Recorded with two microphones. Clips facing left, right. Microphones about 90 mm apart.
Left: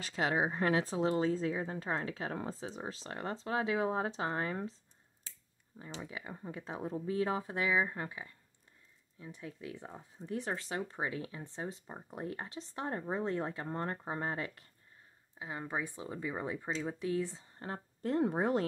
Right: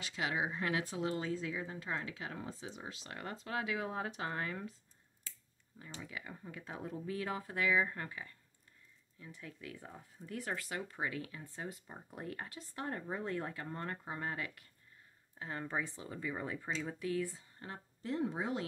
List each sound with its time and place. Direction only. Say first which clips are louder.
0.0 s speech: left 5 dB; 40° left (ahead or behind)
5.8 s speech: left 3 dB; 25° left (ahead or behind)
15.3 s speech: left 1 dB; 15° left (ahead or behind); by 17.8 s 30° left (ahead or behind)
18.0 s speech: left 6 dB; 50° left (ahead or behind)